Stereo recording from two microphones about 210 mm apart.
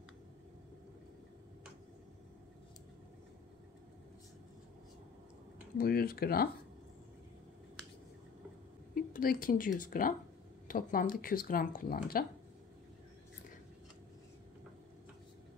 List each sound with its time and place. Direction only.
5.8 s speech: 45° left (ahead or behind)
8.9 s speech: 45° left (ahead or behind)